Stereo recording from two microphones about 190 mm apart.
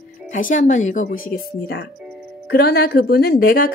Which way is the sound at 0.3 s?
45° left (ahead or behind).